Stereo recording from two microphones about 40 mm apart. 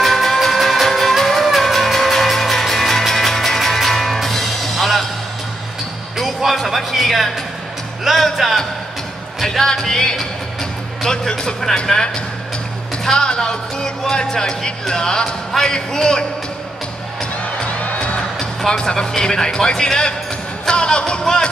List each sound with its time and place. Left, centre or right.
0.0 s music: centre
6.1 s music: centre
13.0 s speech: centre
17.2 s music: centre
18.7 s speech: left
20.6 s music: left